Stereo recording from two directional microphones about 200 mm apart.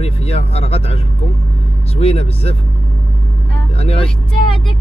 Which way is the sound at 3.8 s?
30° left (ahead or behind).